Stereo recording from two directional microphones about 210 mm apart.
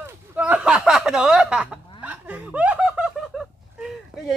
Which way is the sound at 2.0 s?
5° right (ahead or behind).